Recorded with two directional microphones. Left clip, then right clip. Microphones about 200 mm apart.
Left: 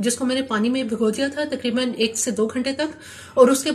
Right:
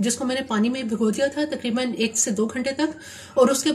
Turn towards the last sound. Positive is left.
turn(degrees=-40)  # may be behind; listen again after turning